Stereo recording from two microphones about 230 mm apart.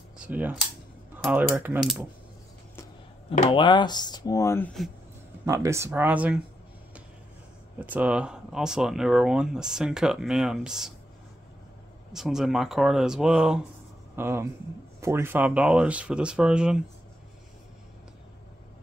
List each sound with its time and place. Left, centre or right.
0.2 s speech: centre
3.3 s speech: left
5.4 s speech: centre
7.8 s speech: centre
12.1 s speech: centre